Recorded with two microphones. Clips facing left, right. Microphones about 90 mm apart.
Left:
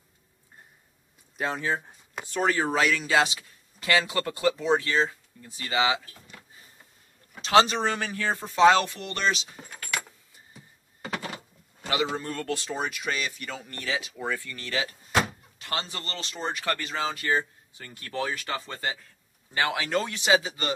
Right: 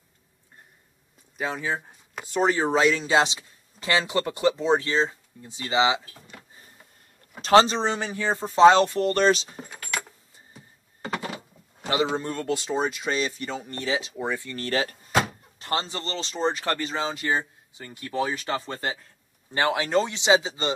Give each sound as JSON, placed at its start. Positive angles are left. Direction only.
{"t": 1.4, "sound": "speech", "side_deg": 0}
{"t": 2.3, "sound": "speech", "side_deg": -20}
{"t": 7.4, "sound": "speech", "side_deg": -30}
{"t": 9.6, "sound": "keys jangling", "side_deg": -5}
{"t": 11.1, "sound": "door", "side_deg": -5}
{"t": 12.2, "sound": "speech", "side_deg": -20}
{"t": 14.5, "sound": "speech", "side_deg": -40}
{"t": 18.4, "sound": "speech", "side_deg": -30}